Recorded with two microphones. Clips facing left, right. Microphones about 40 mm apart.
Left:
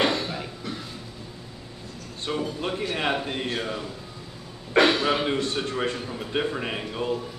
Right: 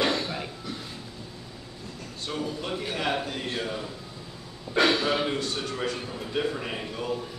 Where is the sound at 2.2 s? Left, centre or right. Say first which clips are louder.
Left 3 dB; left.